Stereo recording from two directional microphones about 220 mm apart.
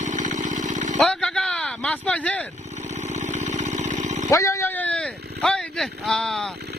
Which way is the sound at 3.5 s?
35° right (ahead or behind).